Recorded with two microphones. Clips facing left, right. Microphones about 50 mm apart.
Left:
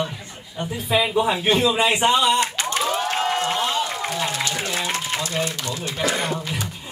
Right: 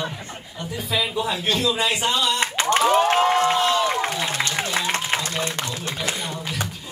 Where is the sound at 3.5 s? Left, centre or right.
Left.